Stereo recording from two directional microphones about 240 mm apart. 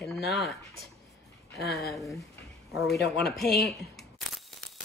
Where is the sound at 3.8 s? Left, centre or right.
Centre.